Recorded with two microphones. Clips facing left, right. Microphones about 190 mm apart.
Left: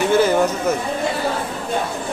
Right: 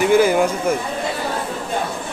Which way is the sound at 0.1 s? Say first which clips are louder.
Even; 10° right (ahead or behind).